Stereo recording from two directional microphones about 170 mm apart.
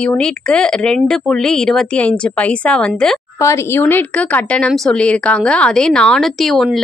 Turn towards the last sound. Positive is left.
turn(degrees=0)  # may be behind; listen again after turning